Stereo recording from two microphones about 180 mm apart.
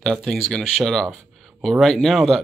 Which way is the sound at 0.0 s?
5° left (ahead or behind).